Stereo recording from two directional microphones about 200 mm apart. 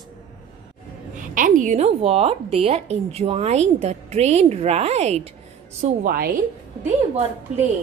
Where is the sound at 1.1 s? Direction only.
40° right (ahead or behind).